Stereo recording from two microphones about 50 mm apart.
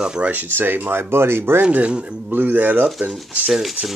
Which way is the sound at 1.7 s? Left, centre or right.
Right.